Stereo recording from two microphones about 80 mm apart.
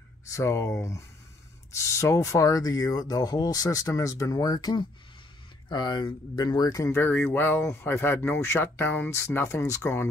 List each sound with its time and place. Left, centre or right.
0.3 s speech: left
5.7 s speech: left
7.1 s speech: left